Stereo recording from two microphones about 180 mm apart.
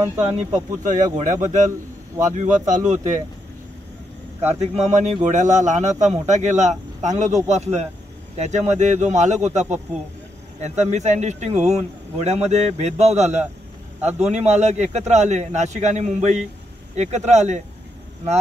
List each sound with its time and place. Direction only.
0.8 s speech: 45° right (ahead or behind)
4.5 s a man's voice: 35° right (ahead or behind)